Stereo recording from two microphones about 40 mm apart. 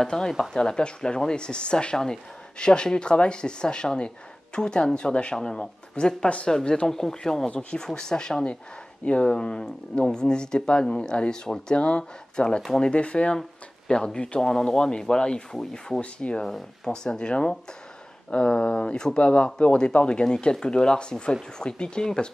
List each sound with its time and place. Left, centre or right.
0.0 s speech: centre
0.3 s speech: centre
0.6 s speech: left
11.7 s speech: left
15.5 s speech: centre
16.0 s speech: left
16.4 s speech: centre